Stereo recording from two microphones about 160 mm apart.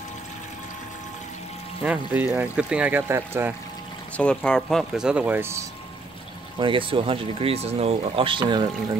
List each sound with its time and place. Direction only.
1.8 s speech: 10° right (ahead or behind)
4.2 s speech: 5° left (ahead or behind); by 5.7 s 15° right (ahead or behind)
6.6 s speech: 35° right (ahead or behind)